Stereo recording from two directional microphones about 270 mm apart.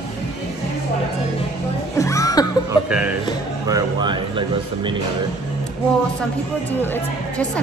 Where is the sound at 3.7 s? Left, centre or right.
Centre.